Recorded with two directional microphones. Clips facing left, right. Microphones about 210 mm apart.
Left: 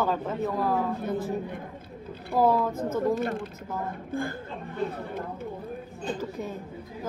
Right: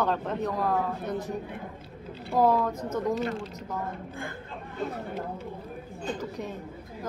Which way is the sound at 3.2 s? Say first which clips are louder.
Left 1 dB; 55° left (ahead or behind).